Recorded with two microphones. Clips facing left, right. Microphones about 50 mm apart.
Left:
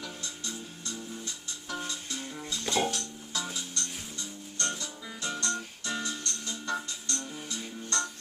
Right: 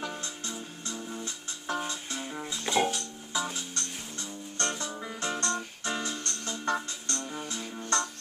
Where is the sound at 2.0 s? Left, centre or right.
Centre.